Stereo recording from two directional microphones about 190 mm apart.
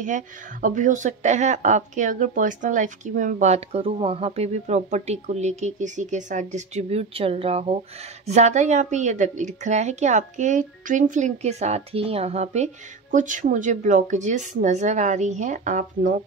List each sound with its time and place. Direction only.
0.0 s a woman's voice: 40° right (ahead or behind)